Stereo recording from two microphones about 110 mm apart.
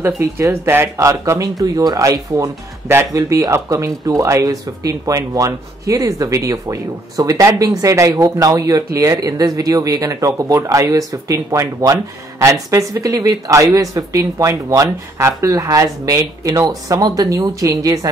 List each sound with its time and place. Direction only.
0.0 s speech: 25° right (ahead or behind)